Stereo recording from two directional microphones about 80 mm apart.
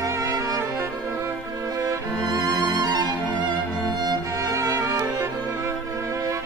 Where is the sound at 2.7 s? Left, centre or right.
Right.